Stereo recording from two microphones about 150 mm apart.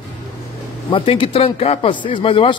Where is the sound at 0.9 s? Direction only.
35° left (ahead or behind).